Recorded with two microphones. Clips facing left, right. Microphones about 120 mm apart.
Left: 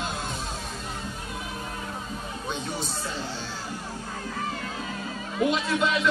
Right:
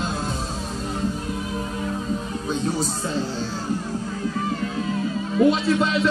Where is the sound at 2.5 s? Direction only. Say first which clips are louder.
Right 7 dB; 35° right (ahead or behind).